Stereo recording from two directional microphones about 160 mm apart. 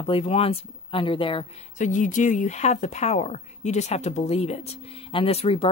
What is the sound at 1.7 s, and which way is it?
Speech, 50° left (ahead or behind).